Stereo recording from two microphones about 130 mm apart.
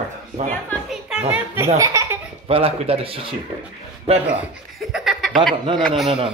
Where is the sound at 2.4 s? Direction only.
45° right (ahead or behind).